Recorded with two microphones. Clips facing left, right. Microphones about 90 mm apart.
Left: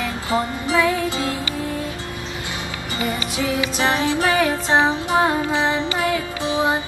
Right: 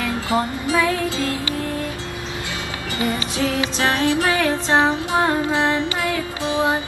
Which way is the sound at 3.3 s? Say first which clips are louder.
Left 1 dB; 15° left (ahead or behind).